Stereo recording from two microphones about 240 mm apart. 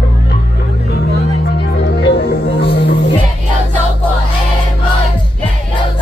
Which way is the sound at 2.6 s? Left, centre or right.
Left.